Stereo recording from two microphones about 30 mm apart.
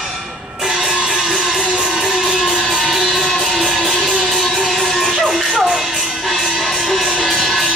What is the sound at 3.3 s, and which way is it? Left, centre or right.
Music, centre.